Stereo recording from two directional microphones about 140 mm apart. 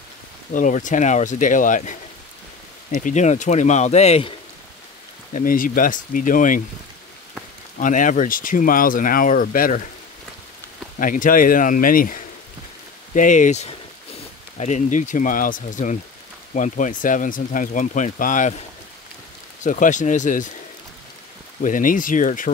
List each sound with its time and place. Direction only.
0.5 s speech: 65° left (ahead or behind); by 4.3 s 50° left (ahead or behind)
5.3 s speech: 75° left (ahead or behind)
7.8 s speech: 70° left (ahead or behind); by 9.8 s 85° left
11.0 s speech: 75° left (ahead or behind)
13.1 s speech: 65° left (ahead or behind)
19.6 s speech: 65° left (ahead or behind)
21.5 s speech: 70° left (ahead or behind)